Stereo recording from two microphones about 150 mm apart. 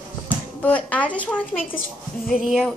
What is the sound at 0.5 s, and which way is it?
A woman's voice, 10° left (ahead or behind).